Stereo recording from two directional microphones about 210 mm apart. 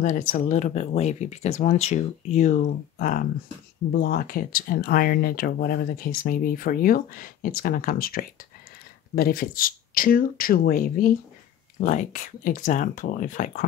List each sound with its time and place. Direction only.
0.0 s speech: 40° left (ahead or behind)